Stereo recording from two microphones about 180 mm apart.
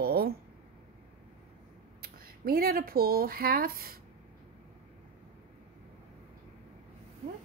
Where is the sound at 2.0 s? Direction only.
55° right (ahead or behind).